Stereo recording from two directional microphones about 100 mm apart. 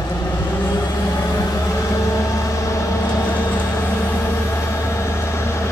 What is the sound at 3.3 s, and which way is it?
Vehicle, 15° left (ahead or behind).